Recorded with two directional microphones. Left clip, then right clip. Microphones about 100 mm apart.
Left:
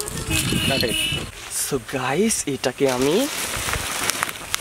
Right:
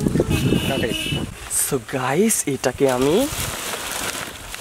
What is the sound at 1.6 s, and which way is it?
Speech, 30° right (ahead or behind).